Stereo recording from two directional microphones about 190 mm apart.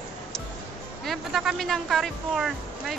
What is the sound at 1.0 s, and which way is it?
Speech, centre (ahead or behind).